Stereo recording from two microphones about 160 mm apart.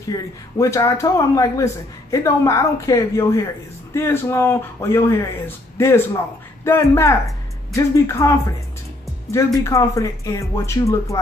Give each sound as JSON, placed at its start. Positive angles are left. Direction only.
{"t": 0.1, "sound": "speech", "side_deg": 20}